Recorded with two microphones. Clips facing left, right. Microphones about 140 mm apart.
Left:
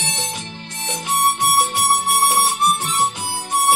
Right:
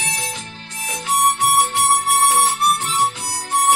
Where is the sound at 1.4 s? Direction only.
15° left (ahead or behind).